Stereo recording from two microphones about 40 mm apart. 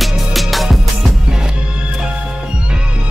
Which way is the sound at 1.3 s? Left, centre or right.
Centre.